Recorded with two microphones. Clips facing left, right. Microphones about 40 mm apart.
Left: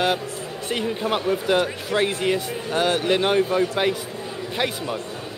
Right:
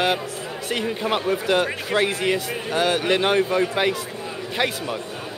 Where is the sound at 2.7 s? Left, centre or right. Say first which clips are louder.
Even; centre.